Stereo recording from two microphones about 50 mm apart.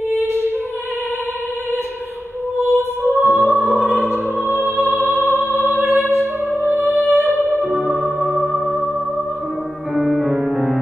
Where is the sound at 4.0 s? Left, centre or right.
Right.